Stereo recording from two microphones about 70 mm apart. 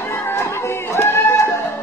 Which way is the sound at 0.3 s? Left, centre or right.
Left.